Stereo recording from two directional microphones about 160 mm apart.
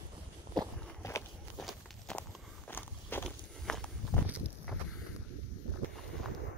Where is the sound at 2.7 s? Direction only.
15° left (ahead or behind).